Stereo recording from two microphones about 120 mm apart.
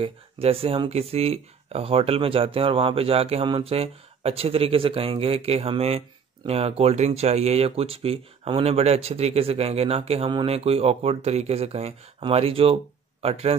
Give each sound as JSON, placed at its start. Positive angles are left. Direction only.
{"t": 0.0, "sound": "speech", "side_deg": -55}